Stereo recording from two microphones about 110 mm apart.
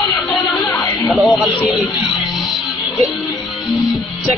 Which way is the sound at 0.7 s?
30° left (ahead or behind).